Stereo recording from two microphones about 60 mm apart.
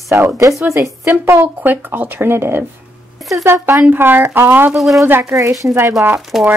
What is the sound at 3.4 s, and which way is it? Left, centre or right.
Speech, right.